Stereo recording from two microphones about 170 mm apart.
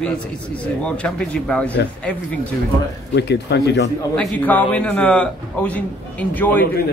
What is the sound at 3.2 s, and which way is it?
Speech, 85° left.